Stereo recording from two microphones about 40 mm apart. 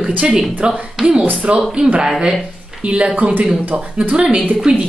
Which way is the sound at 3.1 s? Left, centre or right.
Right.